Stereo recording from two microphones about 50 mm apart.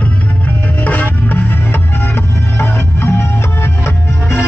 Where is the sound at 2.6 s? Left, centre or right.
Left.